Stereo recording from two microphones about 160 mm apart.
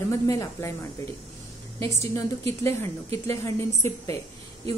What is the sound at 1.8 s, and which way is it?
A woman's voice, 20° left (ahead or behind).